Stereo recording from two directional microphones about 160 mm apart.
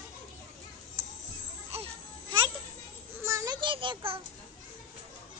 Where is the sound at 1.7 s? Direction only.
35° right (ahead or behind).